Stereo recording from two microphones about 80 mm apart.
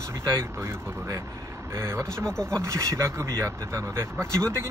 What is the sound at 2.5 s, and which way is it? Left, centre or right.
Speech, right.